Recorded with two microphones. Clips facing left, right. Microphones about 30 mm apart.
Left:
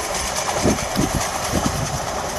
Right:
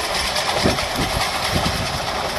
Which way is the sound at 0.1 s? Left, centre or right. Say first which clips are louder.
Right 2 dB; right.